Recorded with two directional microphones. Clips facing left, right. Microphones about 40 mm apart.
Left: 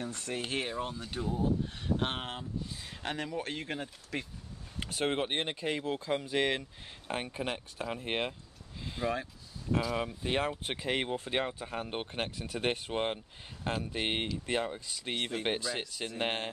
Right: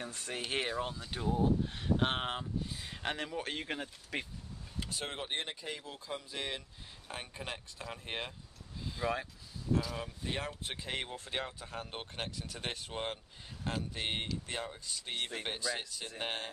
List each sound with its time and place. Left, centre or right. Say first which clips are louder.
0.0 s speech: left 3 dB; centre
1.1 s speech: right 1 dB; centre
4.7 s speech: left 8 dB; left
7.2 s speech: left 7 dB; left
9.0 s speech: left 2 dB; centre
9.9 s speech: left 7 dB; left